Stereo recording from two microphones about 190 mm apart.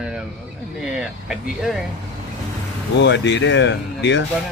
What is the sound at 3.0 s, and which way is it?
Speech, 65° left (ahead or behind).